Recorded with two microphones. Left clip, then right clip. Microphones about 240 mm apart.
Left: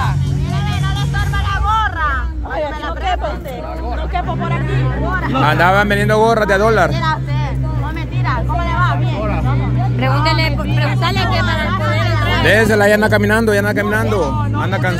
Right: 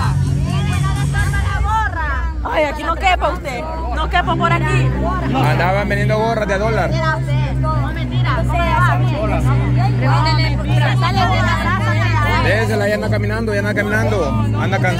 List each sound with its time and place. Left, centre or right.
1.7 s music: left
2.5 s a sound: right
4.1 s music: right
5.4 s speech: left
8.3 s music: left
10.0 s speech: left
12.4 s speech: left; by 15.0 s centre